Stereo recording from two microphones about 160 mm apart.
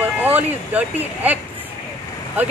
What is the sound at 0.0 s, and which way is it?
Speech, 10° right (ahead or behind).